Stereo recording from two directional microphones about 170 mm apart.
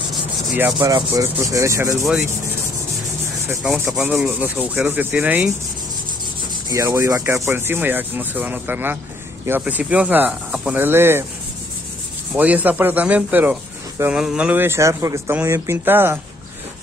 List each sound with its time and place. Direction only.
0.7 s rub: 20° right (ahead or behind)
3.6 s speech: 5° right (ahead or behind)
6.5 s rub: 20° right (ahead or behind)
7.4 s speech: 15° right (ahead or behind)
12.4 s speech: 10° right (ahead or behind)